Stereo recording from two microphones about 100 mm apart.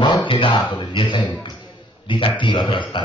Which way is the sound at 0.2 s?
60° left (ahead or behind).